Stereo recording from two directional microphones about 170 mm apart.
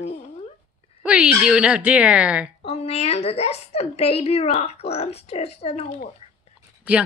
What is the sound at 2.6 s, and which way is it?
A woman's voice, 35° left (ahead or behind).